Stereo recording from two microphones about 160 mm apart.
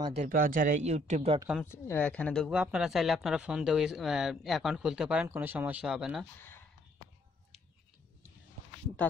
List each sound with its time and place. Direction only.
0.3 s speech: 60° right (ahead or behind); by 1.4 s 45° right (ahead or behind)
1.6 s speech: 10° left (ahead or behind)
2.5 s speech: 5° right (ahead or behind)